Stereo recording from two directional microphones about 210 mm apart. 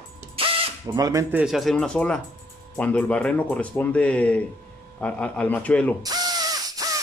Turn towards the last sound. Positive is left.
turn(degrees=-15)  # may be behind; listen again after turning